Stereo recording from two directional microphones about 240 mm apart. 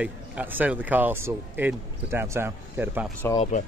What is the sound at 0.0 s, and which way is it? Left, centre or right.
Speech, centre.